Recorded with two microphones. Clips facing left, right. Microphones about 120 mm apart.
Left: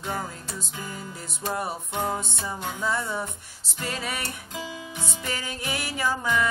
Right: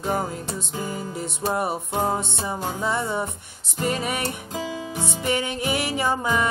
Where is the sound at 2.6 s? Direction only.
35° right (ahead or behind).